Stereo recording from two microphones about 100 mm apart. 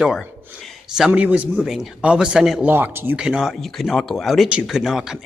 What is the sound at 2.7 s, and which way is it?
Speech, 20° right (ahead or behind).